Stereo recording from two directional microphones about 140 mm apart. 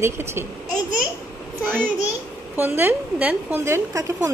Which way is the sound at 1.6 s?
15° right (ahead or behind).